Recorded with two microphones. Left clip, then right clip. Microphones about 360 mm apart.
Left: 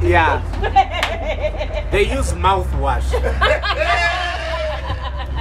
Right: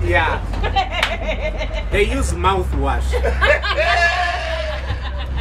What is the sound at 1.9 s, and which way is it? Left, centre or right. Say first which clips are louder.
A man's voice: left 1 dB; centre.